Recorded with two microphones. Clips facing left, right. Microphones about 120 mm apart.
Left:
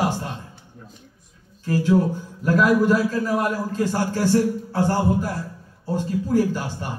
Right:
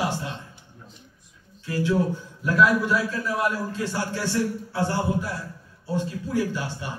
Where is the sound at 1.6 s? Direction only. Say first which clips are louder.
Left 4 dB; 45° left (ahead or behind).